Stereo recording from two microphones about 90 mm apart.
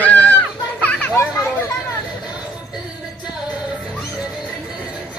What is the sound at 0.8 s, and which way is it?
Children playing, 20° left (ahead or behind).